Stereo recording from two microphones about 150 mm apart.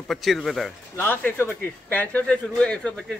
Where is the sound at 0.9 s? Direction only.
15° left (ahead or behind).